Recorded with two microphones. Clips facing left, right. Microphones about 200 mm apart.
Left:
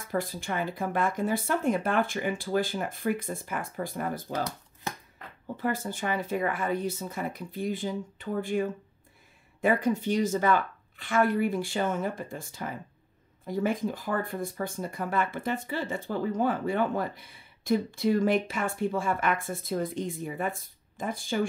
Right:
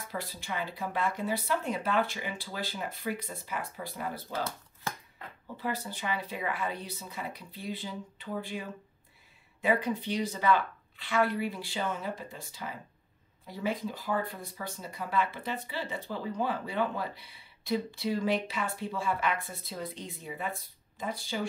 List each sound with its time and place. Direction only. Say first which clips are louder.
0.1 s speech: left 7 dB; 50° left (ahead or behind)
5.6 s speech: left 5 dB; 50° left (ahead or behind)